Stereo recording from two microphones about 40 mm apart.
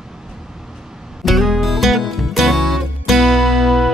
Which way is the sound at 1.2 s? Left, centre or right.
Centre.